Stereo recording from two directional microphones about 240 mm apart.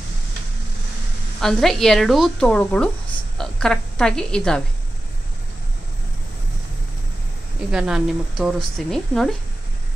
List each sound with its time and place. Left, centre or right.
1.4 s speech: centre
7.7 s speech: centre